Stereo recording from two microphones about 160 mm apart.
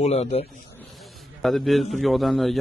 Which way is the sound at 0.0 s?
40° left (ahead or behind).